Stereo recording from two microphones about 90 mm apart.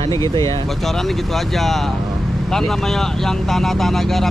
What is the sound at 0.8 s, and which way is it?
Speech, 5° left (ahead or behind).